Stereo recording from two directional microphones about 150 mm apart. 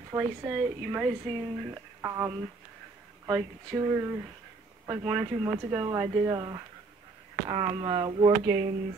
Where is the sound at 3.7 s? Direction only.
20° right (ahead or behind).